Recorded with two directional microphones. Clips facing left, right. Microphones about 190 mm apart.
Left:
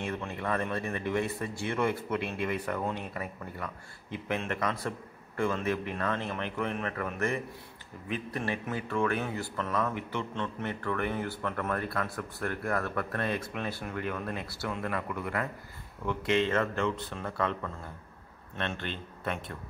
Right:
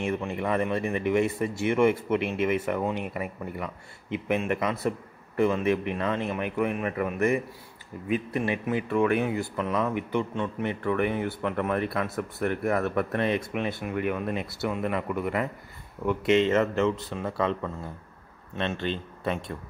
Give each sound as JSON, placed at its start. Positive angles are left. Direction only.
{"t": 0.0, "sound": "speech", "side_deg": -20}